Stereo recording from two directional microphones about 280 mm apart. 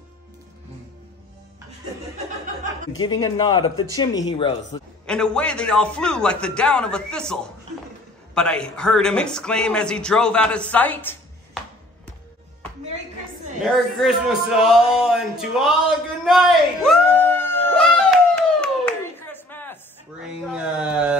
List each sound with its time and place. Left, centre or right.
3.0 s speech: centre
5.0 s speech: centre
8.4 s speech: centre
13.7 s speech: centre
16.3 s a sound: centre
20.5 s speech: centre